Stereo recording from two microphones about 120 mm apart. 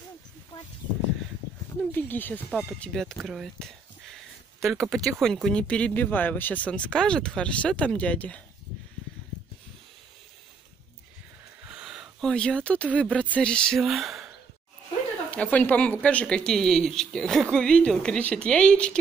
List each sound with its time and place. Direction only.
1.9 s speech: 15° left (ahead or behind)
2.5 s speech: 5° left (ahead or behind)
11.6 s a sound: 10° right (ahead or behind)
12.2 s speech: 5° left (ahead or behind)
15.3 s speech: 10° left (ahead or behind)